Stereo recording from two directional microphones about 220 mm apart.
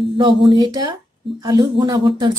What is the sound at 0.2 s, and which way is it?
Speech, 20° right (ahead or behind).